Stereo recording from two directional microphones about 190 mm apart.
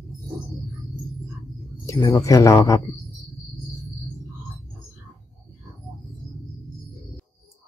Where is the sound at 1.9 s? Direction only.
15° left (ahead or behind).